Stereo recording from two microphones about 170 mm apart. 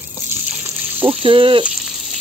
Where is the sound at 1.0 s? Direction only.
30° right (ahead or behind).